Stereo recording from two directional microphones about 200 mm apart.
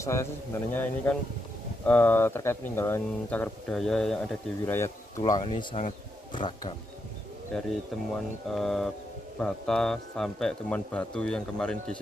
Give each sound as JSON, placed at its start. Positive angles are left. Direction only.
{"t": 0.0, "sound": "speech", "side_deg": 15}
{"t": 8.1, "sound": "speech", "side_deg": 0}